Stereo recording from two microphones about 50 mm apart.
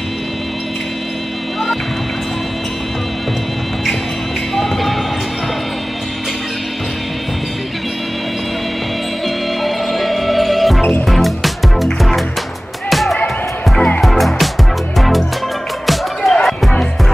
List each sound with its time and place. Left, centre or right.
4.6 s basketball bounce: centre
9.6 s music: centre
13.7 s music: centre
14.0 s music: centre
16.2 s music: centre